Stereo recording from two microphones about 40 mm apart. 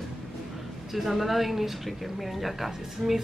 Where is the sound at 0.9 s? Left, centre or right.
Centre.